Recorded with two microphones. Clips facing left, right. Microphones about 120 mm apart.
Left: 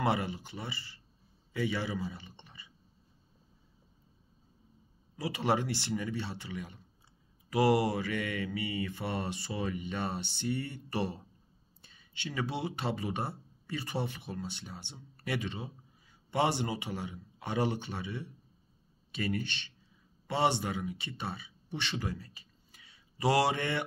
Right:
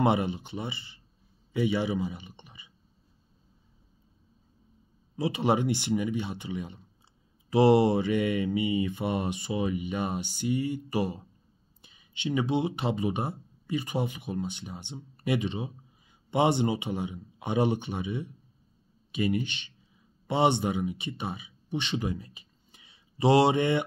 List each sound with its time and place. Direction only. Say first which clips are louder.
0.0 s speech: right 6 dB; 20° right (ahead or behind)
1.5 s mantra: right 6 dB; 20° right (ahead or behind)
5.1 s speech: right 5 dB; 25° right (ahead or behind)
7.4 s mantra: right 6 dB; 25° right (ahead or behind)
11.8 s speech: right 9 dB; 15° right (ahead or behind)
19.1 s mantra: right 6 dB; 15° right (ahead or behind)
20.2 s speech: right 5 dB; 20° right (ahead or behind)